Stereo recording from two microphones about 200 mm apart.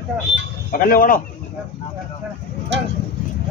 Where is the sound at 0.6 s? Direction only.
45° left (ahead or behind).